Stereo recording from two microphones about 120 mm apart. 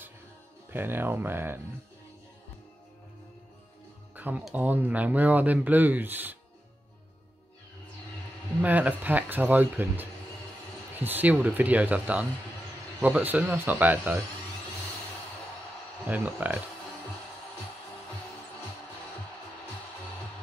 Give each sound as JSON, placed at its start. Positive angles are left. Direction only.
{"t": 0.7, "sound": "speech", "side_deg": -15}
{"t": 4.1, "sound": "a sound", "side_deg": -15}
{"t": 4.6, "sound": "speech", "side_deg": -15}
{"t": 8.5, "sound": "speech", "side_deg": -15}
{"t": 16.1, "sound": "speech", "side_deg": -15}